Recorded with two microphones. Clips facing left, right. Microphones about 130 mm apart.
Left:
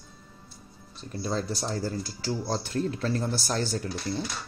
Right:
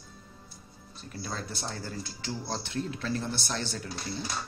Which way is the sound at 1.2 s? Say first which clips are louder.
Left 7 dB; 35° left (ahead or behind).